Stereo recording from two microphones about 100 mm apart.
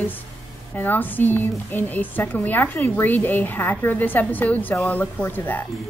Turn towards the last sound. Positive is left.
turn(degrees=20)  # may be behind; listen again after turning